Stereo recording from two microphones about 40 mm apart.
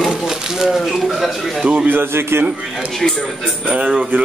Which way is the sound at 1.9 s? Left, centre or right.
Right.